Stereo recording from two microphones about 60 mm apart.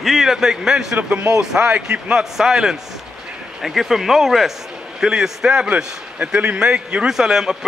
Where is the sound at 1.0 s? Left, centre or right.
Right.